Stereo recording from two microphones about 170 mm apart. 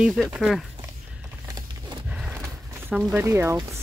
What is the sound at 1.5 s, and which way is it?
Horse, 25° right (ahead or behind).